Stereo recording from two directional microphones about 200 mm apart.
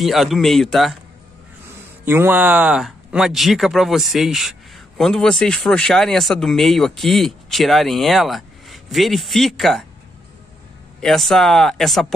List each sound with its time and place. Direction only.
0.0 s speech: centre (ahead or behind)
2.0 s speech: 10° right (ahead or behind)
11.0 s speech: centre (ahead or behind)